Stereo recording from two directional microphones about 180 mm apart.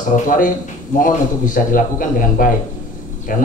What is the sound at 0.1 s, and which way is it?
Speech, 45° left (ahead or behind).